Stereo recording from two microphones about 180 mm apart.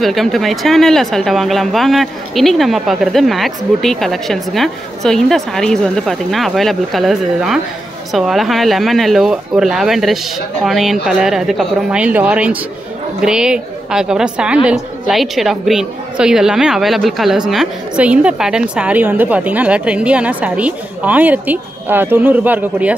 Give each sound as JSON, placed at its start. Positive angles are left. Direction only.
{"t": 0.0, "sound": "a woman's voice", "side_deg": 0}